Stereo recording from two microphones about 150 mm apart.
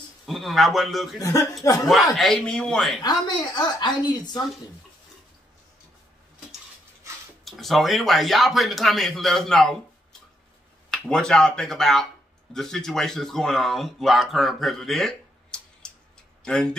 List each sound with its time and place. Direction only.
0.3 s speech: centre (ahead or behind)
1.2 s a woman's voice: 25° left (ahead or behind)
2.1 s speech: 5° left (ahead or behind)
3.0 s a woman's voice: 25° left (ahead or behind)
7.4 s speech: centre (ahead or behind)
10.9 s speech: 5° left (ahead or behind)